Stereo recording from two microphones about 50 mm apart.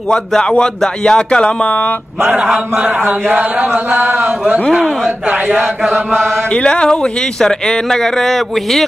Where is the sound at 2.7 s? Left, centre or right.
Right.